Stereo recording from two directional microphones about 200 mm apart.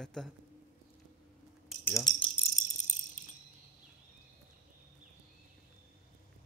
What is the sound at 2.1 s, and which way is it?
Speech, 20° left (ahead or behind).